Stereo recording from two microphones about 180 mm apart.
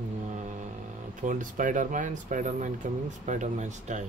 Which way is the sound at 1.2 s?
45° right (ahead or behind).